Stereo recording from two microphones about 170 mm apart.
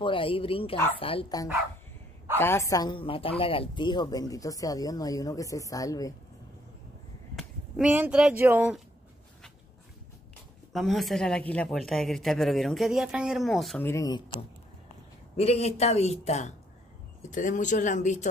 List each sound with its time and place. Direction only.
0.0 s a man's voice: 30° left (ahead or behind)
2.3 s a woman's voice: 15° left (ahead or behind)
7.3 s speech: centre (ahead or behind)
10.7 s speech: centre (ahead or behind)
13.8 s a woman's voice: 20° left (ahead or behind)
15.3 s a man's voice: 35° left (ahead or behind)